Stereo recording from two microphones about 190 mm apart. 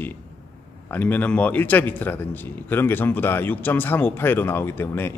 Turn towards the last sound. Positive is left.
turn(degrees=10)  # may be behind; listen again after turning